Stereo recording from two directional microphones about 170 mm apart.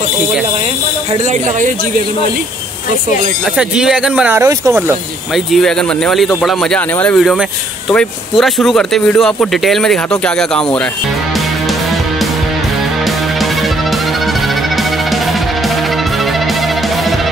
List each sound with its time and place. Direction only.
1.2 s speech: 45° right (ahead or behind)
3.5 s speech: 5° right (ahead or behind)
5.3 s speech: centre (ahead or behind)
11.3 s music: centre (ahead or behind)
16.3 s music: centre (ahead or behind)